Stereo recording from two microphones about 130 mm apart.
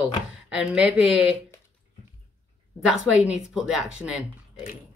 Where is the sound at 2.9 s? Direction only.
5° right (ahead or behind).